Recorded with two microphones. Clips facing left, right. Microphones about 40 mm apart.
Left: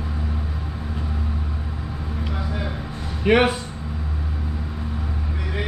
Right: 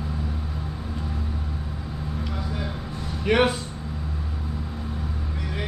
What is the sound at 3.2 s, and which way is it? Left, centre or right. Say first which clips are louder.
Speech: left 3 dB; centre.